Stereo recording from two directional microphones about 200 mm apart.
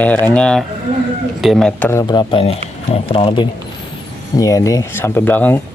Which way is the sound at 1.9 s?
20° left (ahead or behind).